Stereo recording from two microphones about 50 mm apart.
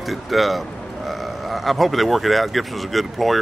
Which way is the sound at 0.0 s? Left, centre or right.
Centre.